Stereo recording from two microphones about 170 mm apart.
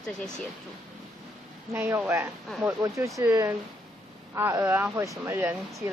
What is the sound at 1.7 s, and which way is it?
Speech, 15° right (ahead or behind).